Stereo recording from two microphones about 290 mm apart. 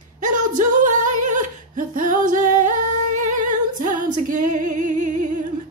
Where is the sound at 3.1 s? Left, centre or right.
Right.